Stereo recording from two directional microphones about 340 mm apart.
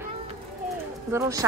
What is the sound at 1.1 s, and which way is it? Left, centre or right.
Speech, centre.